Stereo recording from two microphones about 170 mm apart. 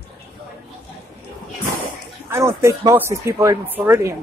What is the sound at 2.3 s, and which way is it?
Speech, 15° right (ahead or behind).